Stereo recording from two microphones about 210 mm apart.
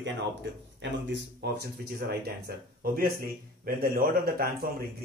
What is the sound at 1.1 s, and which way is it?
A man's voice, 50° right (ahead or behind).